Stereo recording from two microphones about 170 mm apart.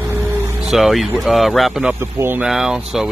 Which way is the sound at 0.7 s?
Centre (ahead or behind).